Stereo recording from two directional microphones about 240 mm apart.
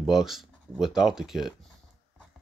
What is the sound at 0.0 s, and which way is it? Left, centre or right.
Speech, centre.